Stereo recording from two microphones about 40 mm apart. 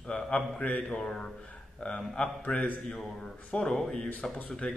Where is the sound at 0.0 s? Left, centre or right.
Left.